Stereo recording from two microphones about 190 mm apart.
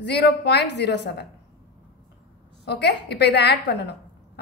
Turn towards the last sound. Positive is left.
turn(degrees=60)  # may be behind; listen again after turning